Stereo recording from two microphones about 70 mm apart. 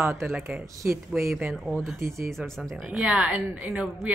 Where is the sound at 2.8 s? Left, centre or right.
Centre.